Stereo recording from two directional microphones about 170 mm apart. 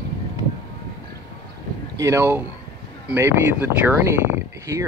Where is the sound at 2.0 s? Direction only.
15° right (ahead or behind).